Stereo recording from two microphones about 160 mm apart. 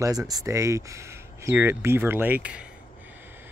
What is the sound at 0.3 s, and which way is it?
Speech, 20° right (ahead or behind).